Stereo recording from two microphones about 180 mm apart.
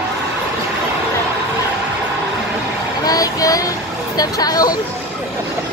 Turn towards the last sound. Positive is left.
turn(degrees=20)  # may be behind; listen again after turning